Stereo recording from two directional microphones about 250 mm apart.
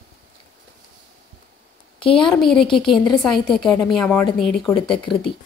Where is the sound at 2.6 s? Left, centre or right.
Centre.